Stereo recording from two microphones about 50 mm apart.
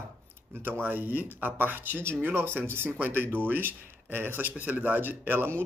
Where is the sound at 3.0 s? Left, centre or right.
Right.